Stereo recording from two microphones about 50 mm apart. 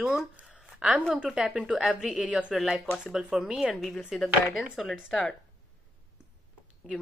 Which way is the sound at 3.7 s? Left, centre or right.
Centre.